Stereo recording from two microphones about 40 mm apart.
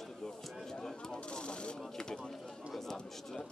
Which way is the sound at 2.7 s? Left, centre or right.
Centre.